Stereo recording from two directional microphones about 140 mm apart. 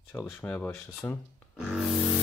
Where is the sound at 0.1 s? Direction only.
15° left (ahead or behind).